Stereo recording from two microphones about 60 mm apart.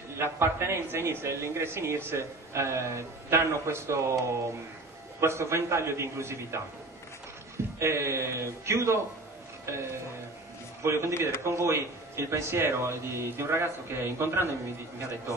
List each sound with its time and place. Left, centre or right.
0.2 s a man's voice: right
7.8 s a man's voice: right